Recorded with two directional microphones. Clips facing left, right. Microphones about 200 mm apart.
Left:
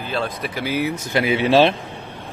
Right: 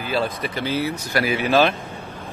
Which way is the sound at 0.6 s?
15° left (ahead or behind).